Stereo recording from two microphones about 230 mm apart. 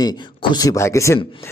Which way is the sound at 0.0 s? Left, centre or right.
Centre.